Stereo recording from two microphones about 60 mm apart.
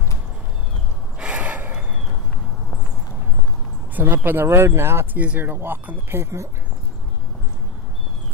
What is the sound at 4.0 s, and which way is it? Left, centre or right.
Speech, right.